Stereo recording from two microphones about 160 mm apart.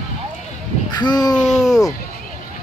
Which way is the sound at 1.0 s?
25° left (ahead or behind).